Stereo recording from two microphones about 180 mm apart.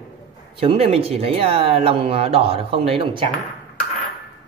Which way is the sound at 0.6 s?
35° right (ahead or behind).